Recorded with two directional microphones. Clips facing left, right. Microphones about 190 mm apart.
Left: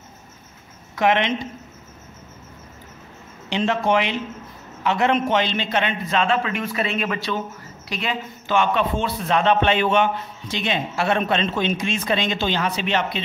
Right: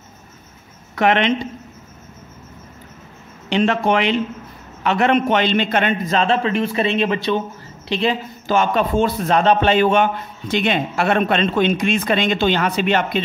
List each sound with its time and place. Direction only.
0.9 s speech: 60° right (ahead or behind)
3.4 s a man's voice: 60° right (ahead or behind)